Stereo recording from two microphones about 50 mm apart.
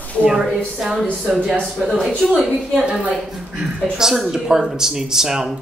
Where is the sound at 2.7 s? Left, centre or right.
Centre.